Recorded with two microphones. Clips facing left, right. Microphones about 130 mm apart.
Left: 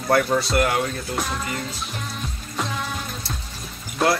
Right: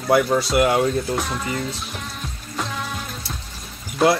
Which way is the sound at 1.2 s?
Centre (ahead or behind).